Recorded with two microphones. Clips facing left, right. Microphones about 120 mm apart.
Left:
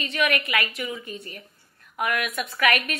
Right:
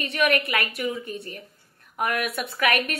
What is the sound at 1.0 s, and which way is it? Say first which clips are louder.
Speech: right 3 dB; 60° right (ahead or behind).